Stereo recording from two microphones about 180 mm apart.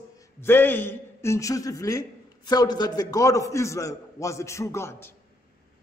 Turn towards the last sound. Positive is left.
turn(degrees=15)  # may be behind; listen again after turning